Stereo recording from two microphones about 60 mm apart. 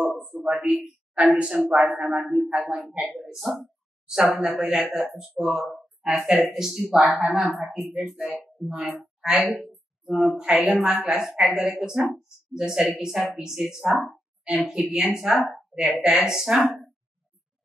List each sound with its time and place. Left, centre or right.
0.3 s a sound: centre
1.3 s a woman's voice: centre
2.2 s speech: centre
2.5 s speech: right
3.2 s a woman's voice: centre